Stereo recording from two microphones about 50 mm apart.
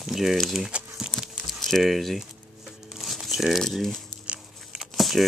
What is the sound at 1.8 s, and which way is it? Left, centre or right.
Speech, centre.